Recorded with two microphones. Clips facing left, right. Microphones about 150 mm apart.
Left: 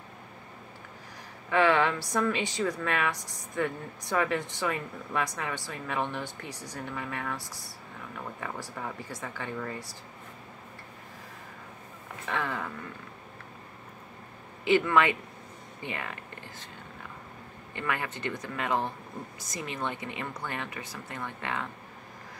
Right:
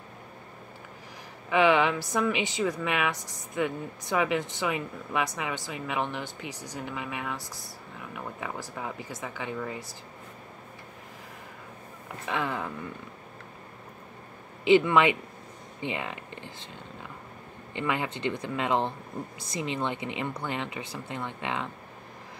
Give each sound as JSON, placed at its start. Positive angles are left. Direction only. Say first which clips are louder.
{"t": 1.5, "sound": "speech", "louder": "right 2 dB", "side_deg": -15}
{"t": 5.3, "sound": "a woman's voice", "louder": "right 2 dB", "side_deg": 0}
{"t": 5.7, "sound": "speech", "louder": "even", "side_deg": -15}
{"t": 12.3, "sound": "speech", "louder": "right 2 dB", "side_deg": -15}
{"t": 14.6, "sound": "speech", "louder": "right 3 dB", "side_deg": -20}
{"t": 17.7, "sound": "speech", "louder": "right 3 dB", "side_deg": -20}